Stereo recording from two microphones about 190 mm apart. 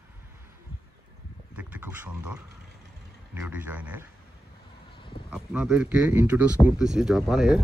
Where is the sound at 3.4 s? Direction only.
10° right (ahead or behind).